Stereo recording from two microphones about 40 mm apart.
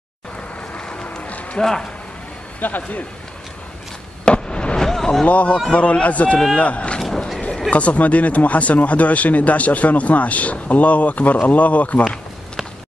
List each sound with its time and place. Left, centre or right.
0.7 s a sound: left
1.6 s speech: centre
2.6 s speech: left
4.2 s fireworks: left
4.8 s a sound: centre
5.2 s speech: left